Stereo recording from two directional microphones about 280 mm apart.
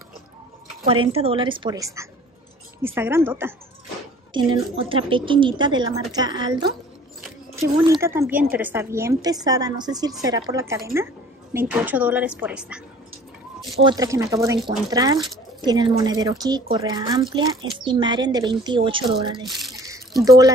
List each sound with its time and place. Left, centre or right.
1.0 s speech: centre
13.7 s speech: centre
19.4 s speech: centre
19.7 s toothbrush: centre
20.2 s speech: centre